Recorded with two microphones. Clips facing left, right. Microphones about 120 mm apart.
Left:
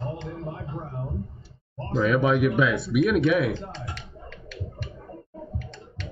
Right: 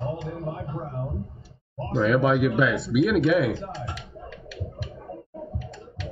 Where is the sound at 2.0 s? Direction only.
Centre (ahead or behind).